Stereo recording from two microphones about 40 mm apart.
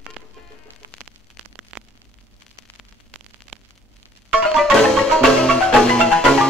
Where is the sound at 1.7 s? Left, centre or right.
Right.